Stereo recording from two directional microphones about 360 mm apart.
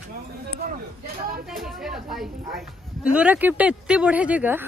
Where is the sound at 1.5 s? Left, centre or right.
Centre.